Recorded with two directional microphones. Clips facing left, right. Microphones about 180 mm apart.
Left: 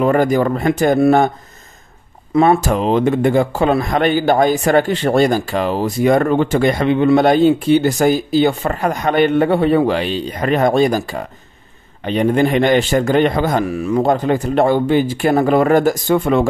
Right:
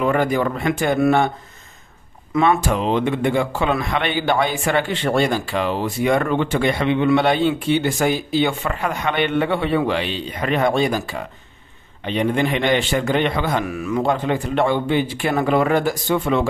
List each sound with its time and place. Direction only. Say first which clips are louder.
0.0 s a man's voice: left 5 dB; 40° left (ahead or behind)
2.3 s a man's voice: left 5 dB; 40° left (ahead or behind)